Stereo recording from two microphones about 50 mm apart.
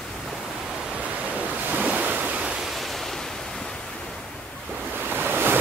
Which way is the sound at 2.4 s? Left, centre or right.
Centre.